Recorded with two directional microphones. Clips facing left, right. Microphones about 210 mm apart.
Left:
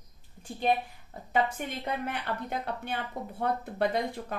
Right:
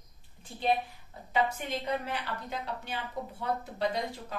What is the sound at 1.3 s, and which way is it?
A woman's voice, 50° left (ahead or behind).